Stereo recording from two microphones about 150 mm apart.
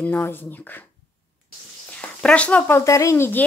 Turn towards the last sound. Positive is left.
turn(degrees=15)  # may be behind; listen again after turning